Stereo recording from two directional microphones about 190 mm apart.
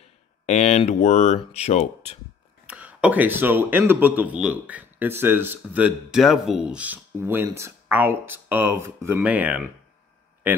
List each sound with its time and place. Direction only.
0.5 s speech: 35° left (ahead or behind)
2.6 s speech: 5° right (ahead or behind)